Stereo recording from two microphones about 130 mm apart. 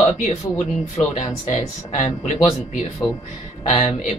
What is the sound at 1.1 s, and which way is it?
Speech, 65° left (ahead or behind).